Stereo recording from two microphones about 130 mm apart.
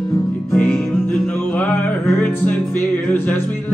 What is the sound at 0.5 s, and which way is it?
Music, 15° left (ahead or behind).